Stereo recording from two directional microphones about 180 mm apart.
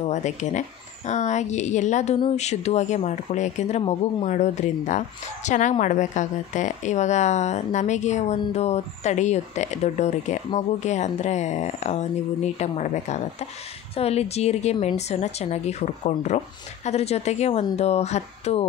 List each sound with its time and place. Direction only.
0.0 s speech: 40° left (ahead or behind)